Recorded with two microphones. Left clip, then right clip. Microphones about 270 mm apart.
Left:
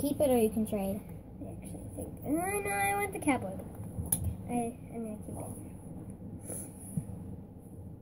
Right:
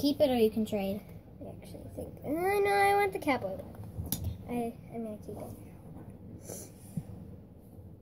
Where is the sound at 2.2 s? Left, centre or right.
Centre.